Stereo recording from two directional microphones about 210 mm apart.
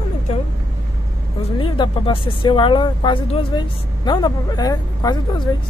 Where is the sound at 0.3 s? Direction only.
30° left (ahead or behind).